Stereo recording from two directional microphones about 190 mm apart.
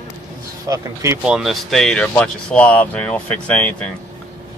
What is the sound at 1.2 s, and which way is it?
Speech, centre (ahead or behind).